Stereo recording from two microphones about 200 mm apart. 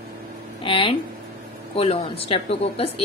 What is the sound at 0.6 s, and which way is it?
Speech, 25° left (ahead or behind).